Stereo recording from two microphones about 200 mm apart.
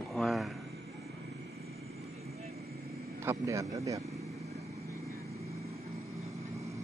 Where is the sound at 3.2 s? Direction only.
15° right (ahead or behind).